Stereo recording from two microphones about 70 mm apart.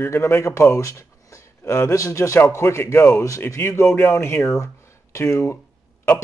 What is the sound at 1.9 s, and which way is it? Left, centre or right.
Speech, left.